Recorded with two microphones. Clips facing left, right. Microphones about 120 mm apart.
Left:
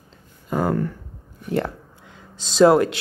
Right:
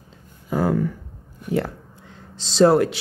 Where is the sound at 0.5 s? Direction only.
5° right (ahead or behind).